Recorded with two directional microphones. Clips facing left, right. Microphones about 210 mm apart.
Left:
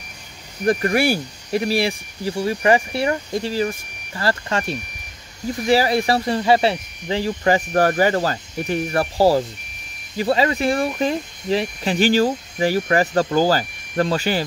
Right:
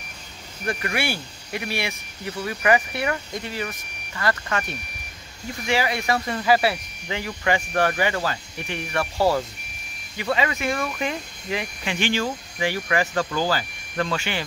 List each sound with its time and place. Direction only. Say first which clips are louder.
0.7 s speech: left 9 dB; 40° left (ahead or behind)